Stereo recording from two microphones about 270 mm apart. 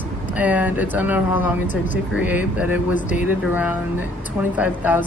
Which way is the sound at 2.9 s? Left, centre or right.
Left.